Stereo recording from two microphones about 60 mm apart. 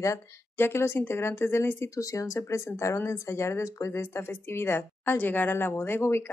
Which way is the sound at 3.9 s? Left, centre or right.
Left.